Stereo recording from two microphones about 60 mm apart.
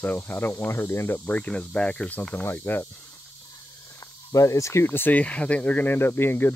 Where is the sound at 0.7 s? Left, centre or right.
Left.